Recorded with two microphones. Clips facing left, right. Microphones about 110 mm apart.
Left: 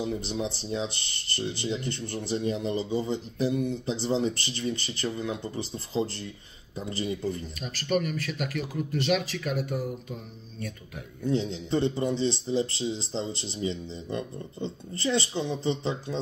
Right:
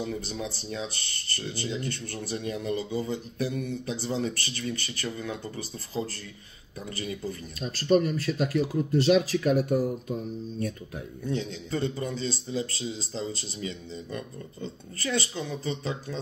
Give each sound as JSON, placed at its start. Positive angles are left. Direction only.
{"t": 0.3, "sound": "a man's voice", "side_deg": 25}
{"t": 7.6, "sound": "speech", "side_deg": -30}
{"t": 11.2, "sound": "a man's voice", "side_deg": 25}